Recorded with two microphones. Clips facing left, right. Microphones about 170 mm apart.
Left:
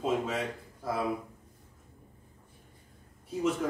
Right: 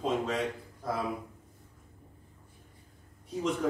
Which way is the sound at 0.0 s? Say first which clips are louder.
Even; 5° left (ahead or behind).